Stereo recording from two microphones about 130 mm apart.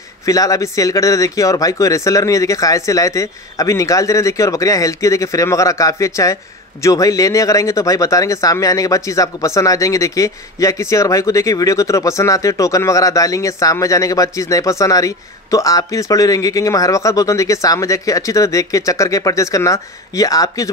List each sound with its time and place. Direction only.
0.3 s speech: 25° left (ahead or behind)